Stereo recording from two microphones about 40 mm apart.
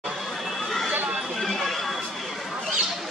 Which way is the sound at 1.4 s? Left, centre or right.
Centre.